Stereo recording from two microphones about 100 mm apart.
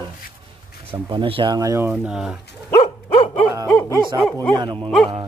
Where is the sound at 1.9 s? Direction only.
5° right (ahead or behind).